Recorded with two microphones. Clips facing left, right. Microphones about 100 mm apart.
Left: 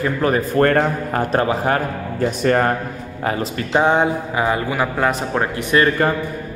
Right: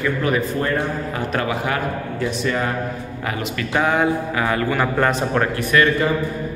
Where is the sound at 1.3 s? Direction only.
35° left (ahead or behind).